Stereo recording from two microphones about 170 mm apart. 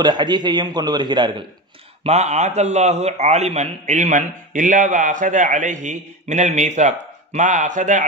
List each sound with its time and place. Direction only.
0.0 s a man's voice: 25° right (ahead or behind)
2.0 s a man's voice: 40° right (ahead or behind)